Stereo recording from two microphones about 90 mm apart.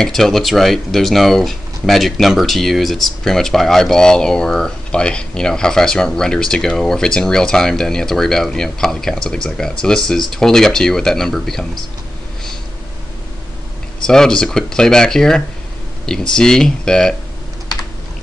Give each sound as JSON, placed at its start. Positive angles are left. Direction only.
{"t": 0.0, "sound": "speech", "side_deg": 5}
{"t": 14.0, "sound": "speech", "side_deg": 5}